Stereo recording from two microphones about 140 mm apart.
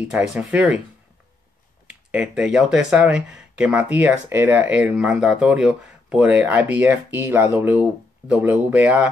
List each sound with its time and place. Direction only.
0.1 s speech: 10° right (ahead or behind)
2.0 s speech: 10° right (ahead or behind)